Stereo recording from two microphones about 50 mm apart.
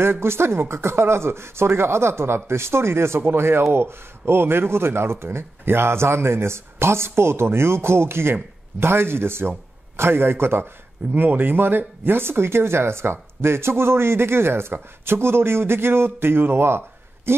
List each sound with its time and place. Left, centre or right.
0.0 s a man's voice: right
11.1 s speech: right